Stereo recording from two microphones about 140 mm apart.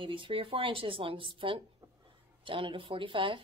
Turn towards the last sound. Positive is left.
turn(degrees=-35)  # may be behind; listen again after turning